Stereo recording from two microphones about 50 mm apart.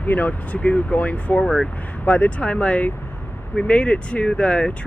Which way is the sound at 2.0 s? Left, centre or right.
Left.